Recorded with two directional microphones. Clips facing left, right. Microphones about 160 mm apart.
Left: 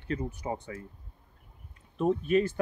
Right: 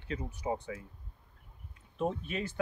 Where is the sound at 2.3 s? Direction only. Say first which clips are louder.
Left 12 dB; 45° left (ahead or behind).